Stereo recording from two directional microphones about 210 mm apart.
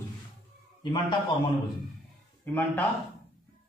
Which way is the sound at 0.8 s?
20° left (ahead or behind).